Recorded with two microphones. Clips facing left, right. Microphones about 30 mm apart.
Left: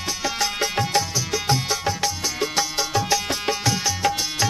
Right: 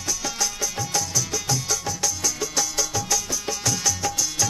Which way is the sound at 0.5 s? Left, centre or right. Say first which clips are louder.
Left 5 dB; left.